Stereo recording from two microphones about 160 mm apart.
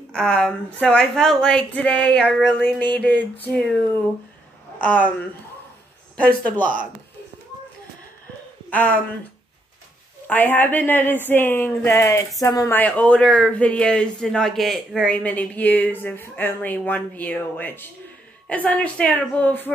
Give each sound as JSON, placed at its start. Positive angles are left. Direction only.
{"t": 0.1, "sound": "speech", "side_deg": 5}
{"t": 4.7, "sound": "speech", "side_deg": 10}
{"t": 6.1, "sound": "speech", "side_deg": 10}
{"t": 8.6, "sound": "a sound", "side_deg": 10}
{"t": 10.2, "sound": "speech", "side_deg": 10}
{"t": 12.7, "sound": "speech", "side_deg": 10}